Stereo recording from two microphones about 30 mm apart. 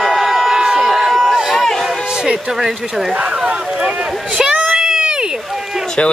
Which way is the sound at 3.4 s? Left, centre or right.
Right.